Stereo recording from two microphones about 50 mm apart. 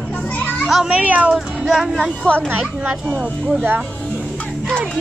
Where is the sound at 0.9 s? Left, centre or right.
Right.